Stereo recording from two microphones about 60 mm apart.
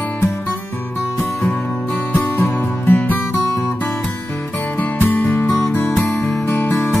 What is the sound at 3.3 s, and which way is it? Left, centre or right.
Music, left.